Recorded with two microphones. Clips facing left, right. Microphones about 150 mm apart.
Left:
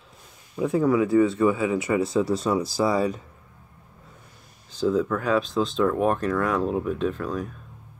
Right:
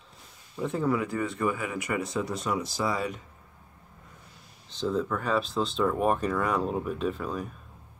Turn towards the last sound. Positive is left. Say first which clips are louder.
# left 4 dB
turn(degrees=-5)  # may be behind; listen again after turning